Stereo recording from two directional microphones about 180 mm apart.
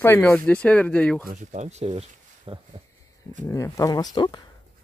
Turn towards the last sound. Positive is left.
turn(degrees=20)  # may be behind; listen again after turning